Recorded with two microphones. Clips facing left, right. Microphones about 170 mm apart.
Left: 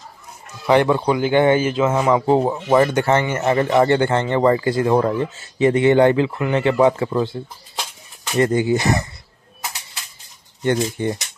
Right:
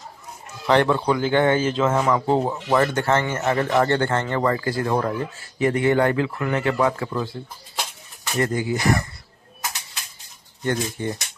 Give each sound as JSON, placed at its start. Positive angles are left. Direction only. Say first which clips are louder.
{"t": 0.7, "sound": "a man's voice", "louder": "left 3 dB", "side_deg": 15}
{"t": 8.4, "sound": "speech", "louder": "left 6 dB", "side_deg": 25}
{"t": 10.6, "sound": "speech", "louder": "left 5 dB", "side_deg": 20}